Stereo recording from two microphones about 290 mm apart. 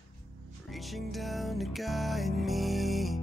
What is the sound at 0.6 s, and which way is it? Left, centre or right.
Music, centre.